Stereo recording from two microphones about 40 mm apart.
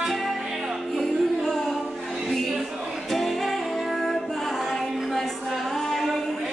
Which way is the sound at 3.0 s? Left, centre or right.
Centre.